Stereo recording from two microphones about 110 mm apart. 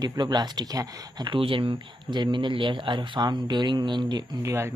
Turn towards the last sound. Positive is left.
turn(degrees=-25)  # may be behind; listen again after turning